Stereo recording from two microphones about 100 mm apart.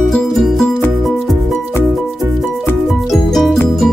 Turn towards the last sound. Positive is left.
turn(degrees=0)  # may be behind; listen again after turning